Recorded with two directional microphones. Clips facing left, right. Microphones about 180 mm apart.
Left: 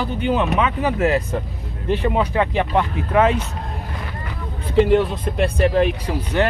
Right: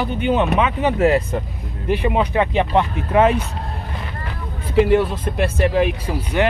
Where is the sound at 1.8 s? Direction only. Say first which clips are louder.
Right 1 dB; 15° right (ahead or behind).